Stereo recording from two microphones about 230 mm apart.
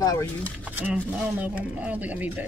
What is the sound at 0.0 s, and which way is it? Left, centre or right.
Speech, centre.